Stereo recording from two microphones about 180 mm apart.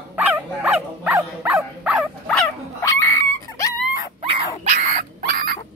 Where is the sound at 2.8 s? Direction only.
15° left (ahead or behind).